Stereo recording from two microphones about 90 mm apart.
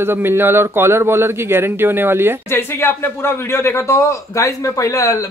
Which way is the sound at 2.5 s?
25° left (ahead or behind).